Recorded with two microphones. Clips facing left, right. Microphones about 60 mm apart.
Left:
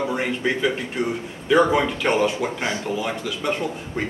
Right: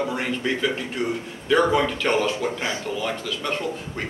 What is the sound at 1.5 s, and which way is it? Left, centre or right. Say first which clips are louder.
A man's voice: left 2 dB; centre.